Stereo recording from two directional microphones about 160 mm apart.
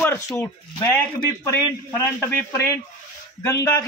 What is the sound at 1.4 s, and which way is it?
A man's voice, 20° left (ahead or behind).